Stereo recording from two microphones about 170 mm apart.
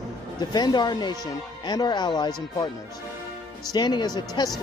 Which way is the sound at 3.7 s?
25° left (ahead or behind).